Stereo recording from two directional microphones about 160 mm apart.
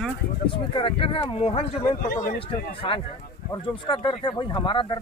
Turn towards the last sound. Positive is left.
turn(degrees=30)  # may be behind; listen again after turning